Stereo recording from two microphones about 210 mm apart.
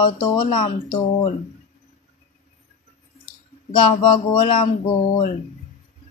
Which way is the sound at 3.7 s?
25° left (ahead or behind).